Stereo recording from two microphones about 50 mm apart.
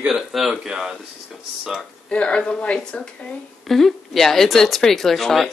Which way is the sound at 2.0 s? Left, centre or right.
Left.